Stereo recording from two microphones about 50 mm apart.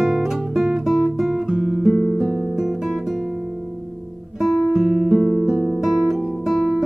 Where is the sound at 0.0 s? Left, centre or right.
Centre.